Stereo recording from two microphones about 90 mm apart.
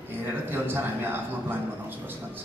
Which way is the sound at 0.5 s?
20° right (ahead or behind).